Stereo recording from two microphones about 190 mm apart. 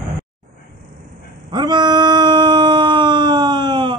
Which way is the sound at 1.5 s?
25° right (ahead or behind).